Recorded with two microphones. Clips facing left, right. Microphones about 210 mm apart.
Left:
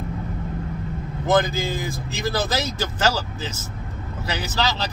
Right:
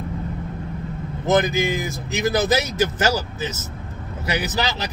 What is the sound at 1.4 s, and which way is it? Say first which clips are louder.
Speech: right 4 dB; 15° right (ahead or behind).